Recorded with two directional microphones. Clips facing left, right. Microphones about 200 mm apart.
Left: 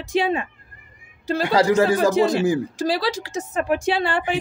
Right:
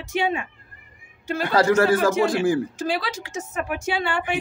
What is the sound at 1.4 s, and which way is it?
Speech, 15° left (ahead or behind).